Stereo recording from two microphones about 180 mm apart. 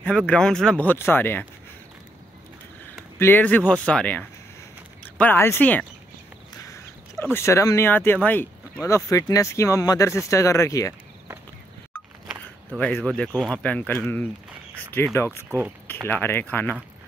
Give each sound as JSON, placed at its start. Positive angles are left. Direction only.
{"t": 0.0, "sound": "speech", "side_deg": 5}
{"t": 3.2, "sound": "speech", "side_deg": 10}
{"t": 12.7, "sound": "speech", "side_deg": 5}